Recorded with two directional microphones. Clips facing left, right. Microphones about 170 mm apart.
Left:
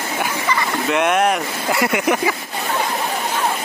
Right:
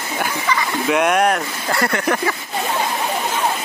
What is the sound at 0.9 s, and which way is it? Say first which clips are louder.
Speech: right 1 dB; centre (ahead or behind).